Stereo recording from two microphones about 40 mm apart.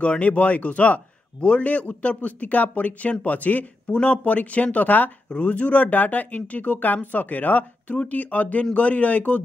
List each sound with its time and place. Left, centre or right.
0.0 s speech: left
3.9 s speech: left